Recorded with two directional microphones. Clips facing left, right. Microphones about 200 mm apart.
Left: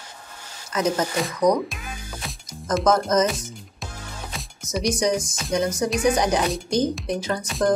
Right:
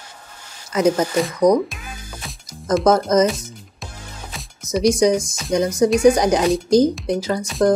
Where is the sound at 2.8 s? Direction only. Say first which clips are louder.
Right 4 dB; 30° right (ahead or behind).